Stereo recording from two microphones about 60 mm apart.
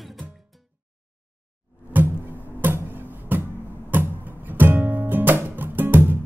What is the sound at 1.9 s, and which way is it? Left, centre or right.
Music, right.